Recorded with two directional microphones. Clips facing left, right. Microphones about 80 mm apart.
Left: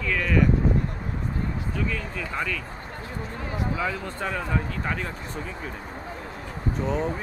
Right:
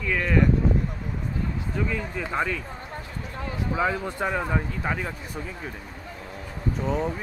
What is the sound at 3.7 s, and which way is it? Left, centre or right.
Speech, right.